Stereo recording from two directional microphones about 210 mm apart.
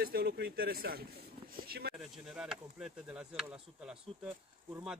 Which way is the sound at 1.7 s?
50° right (ahead or behind).